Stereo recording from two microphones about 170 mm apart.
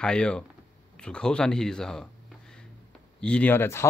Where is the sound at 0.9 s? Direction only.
5° left (ahead or behind).